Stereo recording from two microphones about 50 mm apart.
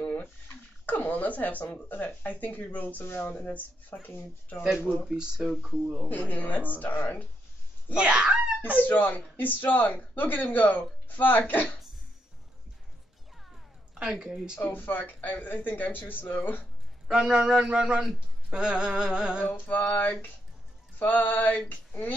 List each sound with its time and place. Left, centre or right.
0.0 s a sound: left
0.8 s speech: left
5.1 s a man's voice: centre
6.0 s speech: left
7.9 s speech: centre
8.7 s speech: left
13.9 s a man's voice: centre
14.5 s speech: left
17.1 s a man's voice: centre
19.9 s speech: left